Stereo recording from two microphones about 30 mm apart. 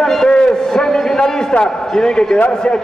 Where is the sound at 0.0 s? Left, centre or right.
Centre.